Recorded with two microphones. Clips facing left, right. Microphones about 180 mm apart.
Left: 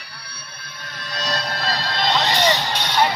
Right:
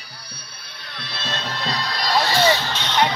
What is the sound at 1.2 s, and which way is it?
Fire alarm, 40° left (ahead or behind).